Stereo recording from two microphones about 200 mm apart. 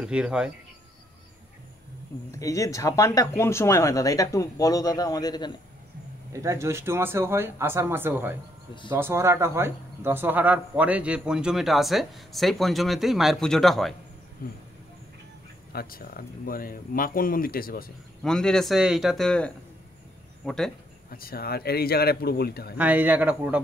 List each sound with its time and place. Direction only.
0.0 s speech: 5° right (ahead or behind)
2.3 s speech: 15° left (ahead or behind)
6.3 s speech: 15° right (ahead or behind); by 13.9 s centre (ahead or behind)
15.7 s speech: 50° left (ahead or behind)
18.2 s speech: 5° left (ahead or behind)
21.1 s speech: 50° left (ahead or behind)
22.8 s speech: 10° right (ahead or behind)